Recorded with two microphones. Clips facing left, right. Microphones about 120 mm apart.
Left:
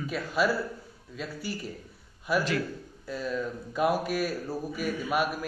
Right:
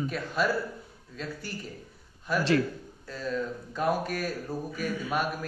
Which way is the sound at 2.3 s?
10° left (ahead or behind).